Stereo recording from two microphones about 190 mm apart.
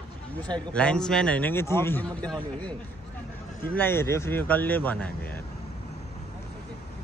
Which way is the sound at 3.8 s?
10° left (ahead or behind).